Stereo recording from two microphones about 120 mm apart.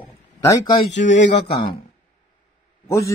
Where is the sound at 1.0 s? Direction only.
90° left.